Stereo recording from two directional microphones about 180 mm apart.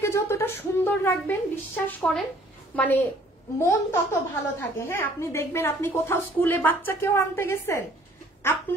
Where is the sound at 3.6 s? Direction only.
15° left (ahead or behind).